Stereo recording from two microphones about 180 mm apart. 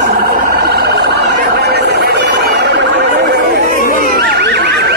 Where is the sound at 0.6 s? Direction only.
60° right (ahead or behind).